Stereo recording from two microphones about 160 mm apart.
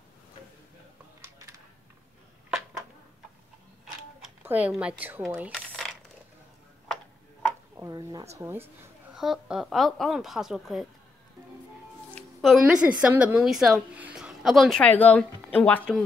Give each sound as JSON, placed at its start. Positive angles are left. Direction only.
{"t": 3.8, "sound": "a sound", "side_deg": -10}
{"t": 7.7, "sound": "a woman's voice", "side_deg": -20}
{"t": 9.1, "sound": "a woman's voice", "side_deg": -5}
{"t": 12.4, "sound": "a woman's voice", "side_deg": 0}